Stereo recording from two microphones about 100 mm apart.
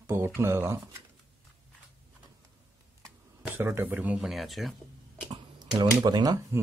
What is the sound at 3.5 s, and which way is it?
Speech, 25° right (ahead or behind).